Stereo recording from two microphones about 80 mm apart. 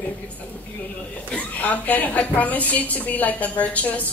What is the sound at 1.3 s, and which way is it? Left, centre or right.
A woman's voice, centre.